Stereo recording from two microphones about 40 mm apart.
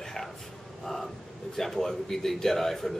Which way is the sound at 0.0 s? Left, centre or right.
Centre.